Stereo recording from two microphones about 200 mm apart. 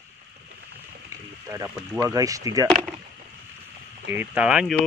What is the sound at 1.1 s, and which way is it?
Speech, 15° right (ahead or behind).